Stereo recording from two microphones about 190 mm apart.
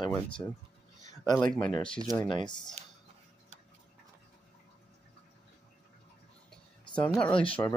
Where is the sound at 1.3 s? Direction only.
5° left (ahead or behind).